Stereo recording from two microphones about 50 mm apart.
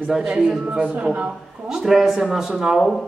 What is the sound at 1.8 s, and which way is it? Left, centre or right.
Speech, centre.